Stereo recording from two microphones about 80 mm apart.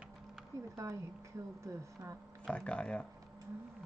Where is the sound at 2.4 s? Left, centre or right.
Centre.